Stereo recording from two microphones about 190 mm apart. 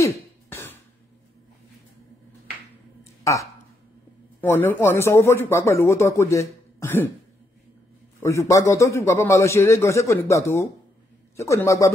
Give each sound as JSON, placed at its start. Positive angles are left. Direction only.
{"t": 0.0, "sound": "cough", "side_deg": 10}
{"t": 3.0, "sound": "a sound", "side_deg": 15}
{"t": 4.4, "sound": "speech", "side_deg": 10}
{"t": 8.2, "sound": "speech", "side_deg": 15}